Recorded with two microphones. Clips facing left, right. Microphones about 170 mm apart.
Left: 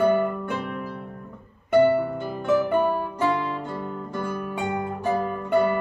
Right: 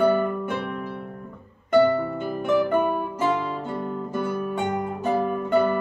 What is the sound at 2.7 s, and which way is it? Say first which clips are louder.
Music: even; 15° right (ahead or behind).